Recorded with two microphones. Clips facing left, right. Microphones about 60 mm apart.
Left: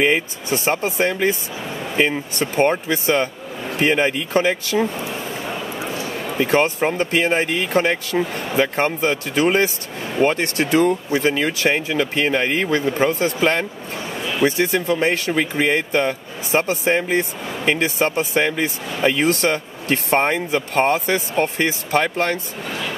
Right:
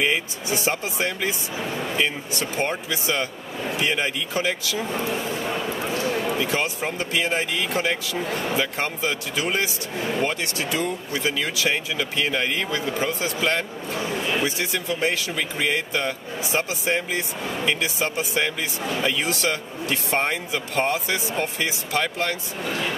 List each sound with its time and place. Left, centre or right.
0.0 s speech: left
6.4 s speech: left